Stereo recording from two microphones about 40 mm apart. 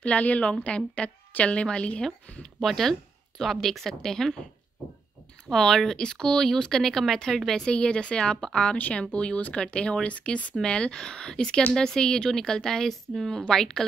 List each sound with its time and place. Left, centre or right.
0.0 s a woman's voice: left
2.6 s a woman's voice: centre
5.5 s a woman's voice: centre
7.7 s a woman's voice: left